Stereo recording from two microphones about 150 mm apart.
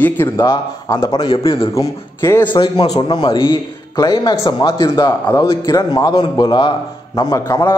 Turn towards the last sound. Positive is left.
turn(degrees=20)  # may be behind; listen again after turning